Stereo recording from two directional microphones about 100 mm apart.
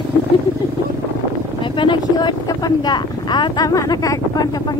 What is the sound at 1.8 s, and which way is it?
Speech, 50° left (ahead or behind).